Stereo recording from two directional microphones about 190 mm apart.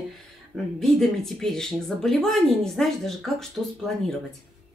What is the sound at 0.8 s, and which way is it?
Speech, centre (ahead or behind).